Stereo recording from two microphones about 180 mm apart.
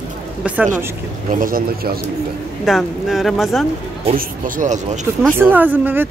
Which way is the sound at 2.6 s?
Centre (ahead or behind).